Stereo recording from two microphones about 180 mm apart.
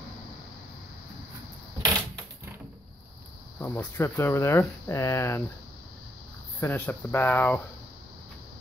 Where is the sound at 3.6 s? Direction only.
15° left (ahead or behind).